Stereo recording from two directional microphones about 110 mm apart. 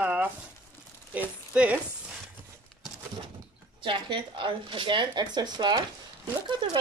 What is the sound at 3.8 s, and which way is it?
A woman's voice, 50° right (ahead or behind).